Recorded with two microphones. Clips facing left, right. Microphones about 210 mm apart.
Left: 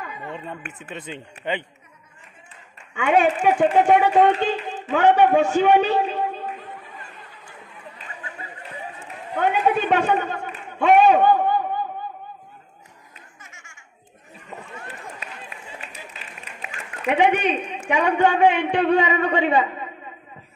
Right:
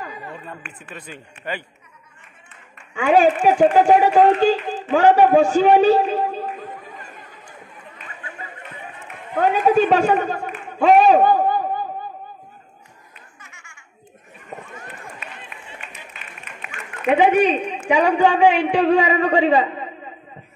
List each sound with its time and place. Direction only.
0.7 s speech: 20° left (ahead or behind)
3.0 s a woman's voice: 30° right (ahead or behind)
9.4 s a woman's voice: 35° right (ahead or behind)
10.9 s a sound: 35° right (ahead or behind)
15.4 s a sound: 35° left (ahead or behind)
17.2 s a woman's voice: 30° right (ahead or behind)